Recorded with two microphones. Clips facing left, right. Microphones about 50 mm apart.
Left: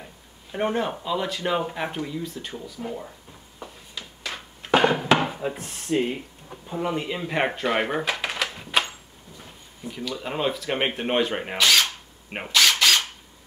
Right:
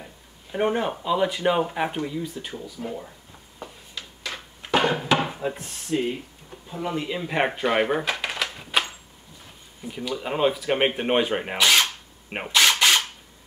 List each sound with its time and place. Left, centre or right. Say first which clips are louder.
0.0 s speech: even; centre
4.8 s a sound: left 2 dB; left
5.4 s speech: even; centre
5.9 s speech: left 1 dB; left
6.8 s speech: left 1 dB; centre
7.2 s speech: right 1 dB; centre
9.8 s speech: right 2 dB; centre
11.5 s drill: even; centre
12.6 s drill: right 1 dB; centre